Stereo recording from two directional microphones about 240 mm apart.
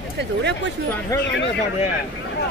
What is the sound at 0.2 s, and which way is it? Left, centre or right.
Speech, right.